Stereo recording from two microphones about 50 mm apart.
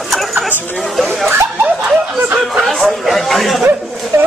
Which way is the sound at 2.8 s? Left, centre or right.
Centre.